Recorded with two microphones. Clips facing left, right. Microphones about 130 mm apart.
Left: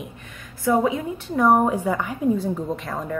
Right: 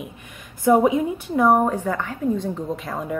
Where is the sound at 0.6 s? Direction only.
20° right (ahead or behind).